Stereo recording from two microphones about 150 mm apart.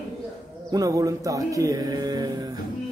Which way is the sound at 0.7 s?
25° right (ahead or behind).